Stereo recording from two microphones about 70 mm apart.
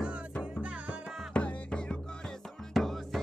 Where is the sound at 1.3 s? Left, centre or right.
Centre.